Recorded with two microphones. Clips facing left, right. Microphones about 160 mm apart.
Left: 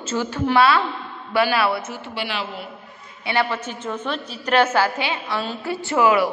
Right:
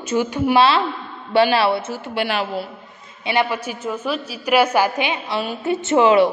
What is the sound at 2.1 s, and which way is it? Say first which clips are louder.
Speech: right 6 dB; 50° right (ahead or behind).